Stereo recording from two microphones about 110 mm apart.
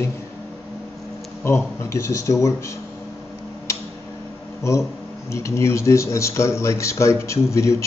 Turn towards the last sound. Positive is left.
turn(degrees=25)  # may be behind; listen again after turning